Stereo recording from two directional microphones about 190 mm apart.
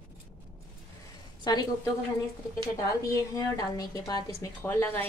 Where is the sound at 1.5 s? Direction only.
20° left (ahead or behind).